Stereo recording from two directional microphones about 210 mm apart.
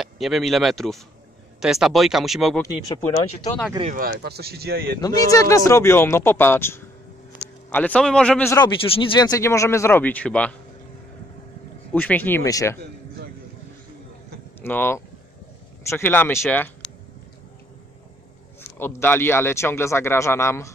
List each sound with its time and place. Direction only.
0.0 s speech: centre (ahead or behind)
2.6 s speech: 15° left (ahead or behind)
3.9 s speech: 45° right (ahead or behind)
5.0 s speech: 15° left (ahead or behind)
11.9 s speech: 5° left (ahead or behind)
14.6 s speech: 10° left (ahead or behind)
18.8 s speech: 10° left (ahead or behind)